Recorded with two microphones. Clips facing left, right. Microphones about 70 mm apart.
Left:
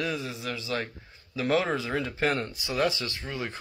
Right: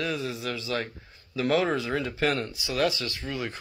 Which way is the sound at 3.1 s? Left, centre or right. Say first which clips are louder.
Right 2 dB; centre.